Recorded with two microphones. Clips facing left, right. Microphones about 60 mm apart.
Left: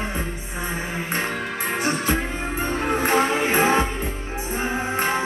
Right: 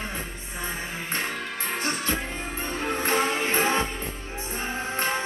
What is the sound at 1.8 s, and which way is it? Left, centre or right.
Music, centre.